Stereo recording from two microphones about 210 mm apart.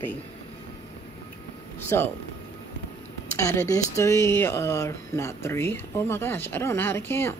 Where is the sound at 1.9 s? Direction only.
10° left (ahead or behind).